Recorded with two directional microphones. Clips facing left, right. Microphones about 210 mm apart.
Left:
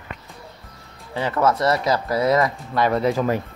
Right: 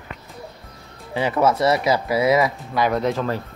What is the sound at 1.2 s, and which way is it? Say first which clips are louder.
Speech: right 2 dB; 10° right (ahead or behind).